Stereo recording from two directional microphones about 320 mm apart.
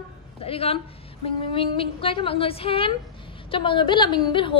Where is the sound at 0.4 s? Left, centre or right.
Centre.